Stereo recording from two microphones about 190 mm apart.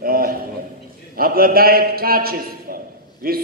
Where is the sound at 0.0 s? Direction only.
50° right (ahead or behind).